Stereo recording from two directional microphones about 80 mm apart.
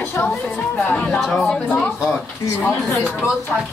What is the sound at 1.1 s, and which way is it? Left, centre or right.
Speech, centre.